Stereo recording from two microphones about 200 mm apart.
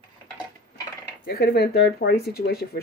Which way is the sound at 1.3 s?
50° left (ahead or behind).